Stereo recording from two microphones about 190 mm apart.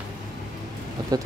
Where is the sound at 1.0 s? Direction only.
20° right (ahead or behind).